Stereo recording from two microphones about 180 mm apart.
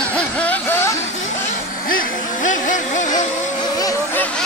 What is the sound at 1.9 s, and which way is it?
Music, 50° left (ahead or behind).